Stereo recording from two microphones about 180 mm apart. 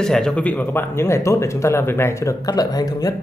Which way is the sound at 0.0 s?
5° left (ahead or behind).